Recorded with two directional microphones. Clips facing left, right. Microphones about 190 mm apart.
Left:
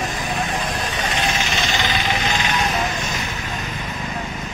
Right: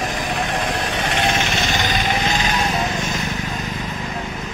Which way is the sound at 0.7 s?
65° right (ahead or behind).